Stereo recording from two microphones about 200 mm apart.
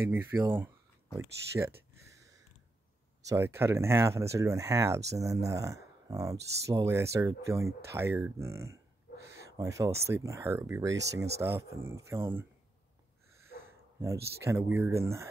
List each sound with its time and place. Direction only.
0.1 s speech: 10° right (ahead or behind)
3.3 s speech: 10° right (ahead or behind)
9.1 s a sound: 45° left (ahead or behind)
9.6 s speech: 15° right (ahead or behind)
13.9 s speech: 15° right (ahead or behind)